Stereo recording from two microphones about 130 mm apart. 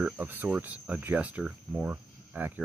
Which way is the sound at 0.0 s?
15° right (ahead or behind).